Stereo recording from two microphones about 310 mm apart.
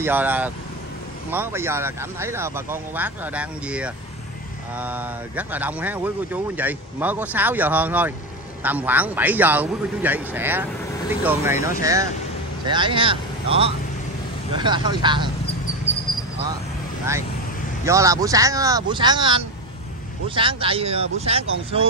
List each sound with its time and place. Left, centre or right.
0.0 s speech: centre
16.1 s a sound: centre
17.8 s speech: centre